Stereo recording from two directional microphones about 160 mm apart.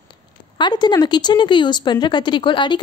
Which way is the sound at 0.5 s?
25° left (ahead or behind).